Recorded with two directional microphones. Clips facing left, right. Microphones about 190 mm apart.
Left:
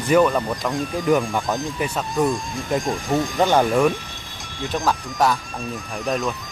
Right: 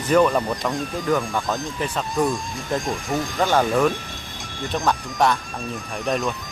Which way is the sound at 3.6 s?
Centre (ahead or behind).